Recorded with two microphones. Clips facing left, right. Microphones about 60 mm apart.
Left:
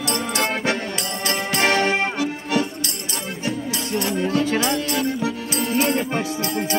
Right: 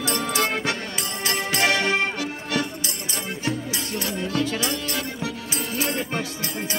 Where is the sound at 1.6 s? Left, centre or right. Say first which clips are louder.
Left 3 dB; left.